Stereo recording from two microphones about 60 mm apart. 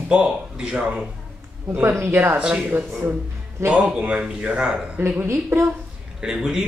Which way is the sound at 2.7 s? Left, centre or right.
Right.